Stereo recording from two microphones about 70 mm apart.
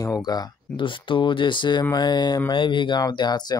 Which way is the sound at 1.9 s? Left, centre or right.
Left.